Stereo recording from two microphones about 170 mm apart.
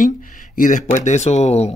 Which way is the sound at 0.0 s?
50° left (ahead or behind).